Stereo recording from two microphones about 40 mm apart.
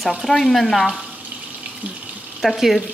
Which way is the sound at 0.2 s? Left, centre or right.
Centre.